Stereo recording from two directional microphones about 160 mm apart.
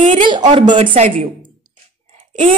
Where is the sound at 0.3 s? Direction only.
30° right (ahead or behind).